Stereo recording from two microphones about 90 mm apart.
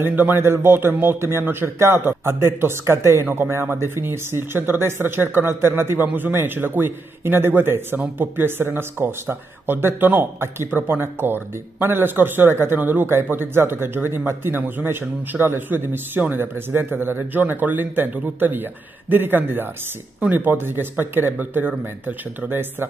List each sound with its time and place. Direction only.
0.0 s a man's voice: 20° right (ahead or behind)